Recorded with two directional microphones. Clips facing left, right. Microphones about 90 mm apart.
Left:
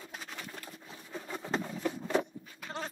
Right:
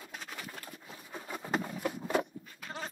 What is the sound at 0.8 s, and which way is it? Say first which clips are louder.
Patter: left 2 dB; 5° right (ahead or behind).